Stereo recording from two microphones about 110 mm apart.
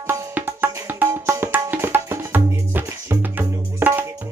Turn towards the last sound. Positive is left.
turn(degrees=-15)  # may be behind; listen again after turning